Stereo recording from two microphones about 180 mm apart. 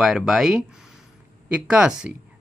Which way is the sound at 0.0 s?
Centre (ahead or behind).